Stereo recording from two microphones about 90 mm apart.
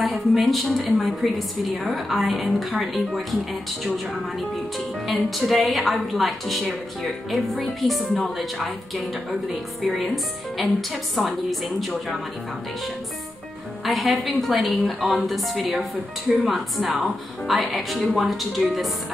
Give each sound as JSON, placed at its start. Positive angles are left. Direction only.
{"t": 0.0, "sound": "a woman's voice", "side_deg": 0}
{"t": 9.9, "sound": "a woman's voice", "side_deg": 0}
{"t": 13.8, "sound": "a woman's voice", "side_deg": 0}